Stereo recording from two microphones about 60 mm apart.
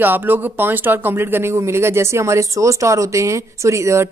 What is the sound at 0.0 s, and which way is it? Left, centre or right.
Speech, right.